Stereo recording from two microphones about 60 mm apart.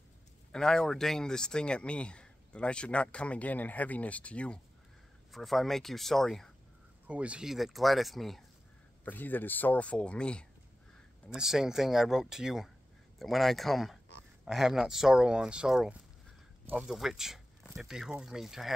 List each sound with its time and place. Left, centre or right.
0.5 s speech: centre
5.3 s speech: centre
7.1 s speech: right
7.4 s speech: centre
9.0 s speech: left; by 10.4 s centre
11.3 s speech: centre
13.2 s speech: centre